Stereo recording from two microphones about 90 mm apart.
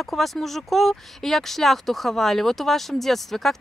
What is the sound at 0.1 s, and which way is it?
Speech, centre (ahead or behind).